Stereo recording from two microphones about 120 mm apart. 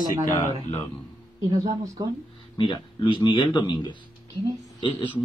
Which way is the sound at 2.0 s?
35° right (ahead or behind).